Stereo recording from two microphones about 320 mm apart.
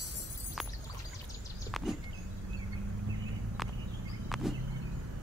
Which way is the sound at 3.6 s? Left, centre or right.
Centre.